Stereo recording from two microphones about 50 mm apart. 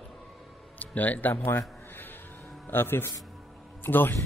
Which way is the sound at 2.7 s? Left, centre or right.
Left.